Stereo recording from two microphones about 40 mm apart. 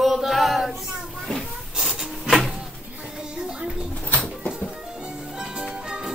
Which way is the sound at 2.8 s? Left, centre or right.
Right.